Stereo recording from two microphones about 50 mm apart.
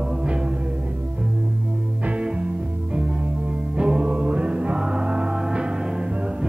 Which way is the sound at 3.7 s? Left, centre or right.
Centre.